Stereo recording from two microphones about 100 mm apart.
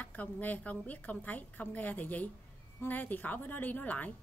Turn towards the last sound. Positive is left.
turn(degrees=15)  # may be behind; listen again after turning